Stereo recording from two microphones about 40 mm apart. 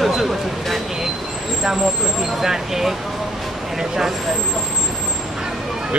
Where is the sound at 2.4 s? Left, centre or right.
Centre.